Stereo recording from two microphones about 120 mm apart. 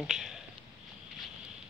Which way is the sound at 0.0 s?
5° right (ahead or behind).